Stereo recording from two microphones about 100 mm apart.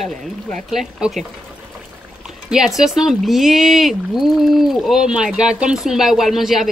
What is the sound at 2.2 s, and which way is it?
Speech, 5° right (ahead or behind).